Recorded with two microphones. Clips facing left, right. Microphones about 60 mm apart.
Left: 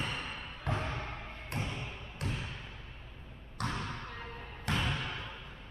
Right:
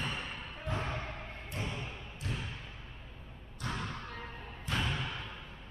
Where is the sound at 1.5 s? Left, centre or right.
Left.